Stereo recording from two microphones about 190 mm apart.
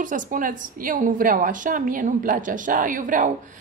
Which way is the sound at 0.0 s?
45° right (ahead or behind).